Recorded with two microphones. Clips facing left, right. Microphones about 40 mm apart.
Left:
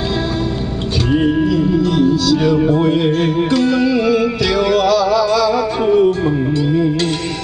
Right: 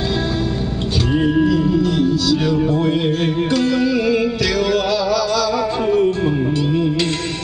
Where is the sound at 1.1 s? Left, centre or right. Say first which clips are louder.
Left 1 dB; centre.